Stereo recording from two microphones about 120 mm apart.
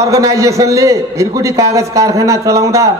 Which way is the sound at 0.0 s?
25° right (ahead or behind).